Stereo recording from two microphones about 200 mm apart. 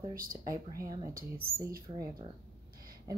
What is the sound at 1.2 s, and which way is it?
Speech, 50° right (ahead or behind).